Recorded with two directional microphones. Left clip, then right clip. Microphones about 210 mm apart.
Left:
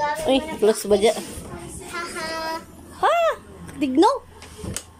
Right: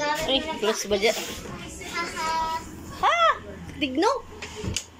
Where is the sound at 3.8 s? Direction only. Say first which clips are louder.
Left 5 dB; 20° left (ahead or behind).